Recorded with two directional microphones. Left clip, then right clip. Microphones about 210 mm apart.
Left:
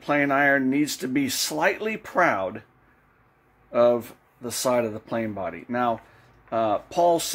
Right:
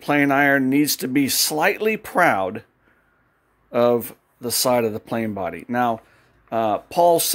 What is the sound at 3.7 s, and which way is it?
Speech, 50° right (ahead or behind).